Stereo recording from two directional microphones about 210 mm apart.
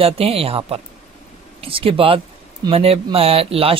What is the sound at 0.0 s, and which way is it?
Speech, 25° right (ahead or behind).